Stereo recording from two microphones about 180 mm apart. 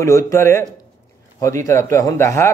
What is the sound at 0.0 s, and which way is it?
Speech, 15° left (ahead or behind).